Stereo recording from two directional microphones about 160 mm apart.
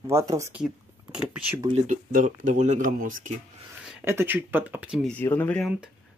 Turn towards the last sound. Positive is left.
turn(degrees=5)  # may be behind; listen again after turning